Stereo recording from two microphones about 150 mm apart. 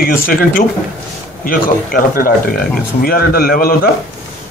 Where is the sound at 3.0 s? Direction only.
90° left.